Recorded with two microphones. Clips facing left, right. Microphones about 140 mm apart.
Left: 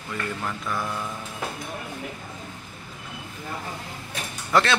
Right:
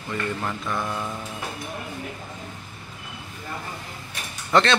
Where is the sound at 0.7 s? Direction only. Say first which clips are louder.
Right 1 dB; 20° right (ahead or behind).